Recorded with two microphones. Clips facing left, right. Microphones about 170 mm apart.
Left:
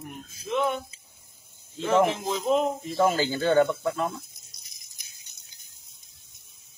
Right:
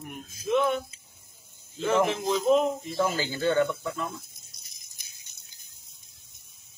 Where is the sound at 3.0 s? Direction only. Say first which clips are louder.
Left 3 dB; 50° left (ahead or behind).